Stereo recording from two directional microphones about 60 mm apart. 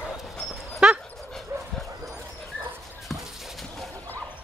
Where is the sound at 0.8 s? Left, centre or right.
Centre.